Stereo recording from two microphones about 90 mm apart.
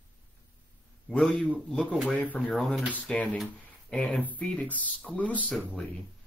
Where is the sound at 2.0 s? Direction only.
20° left (ahead or behind).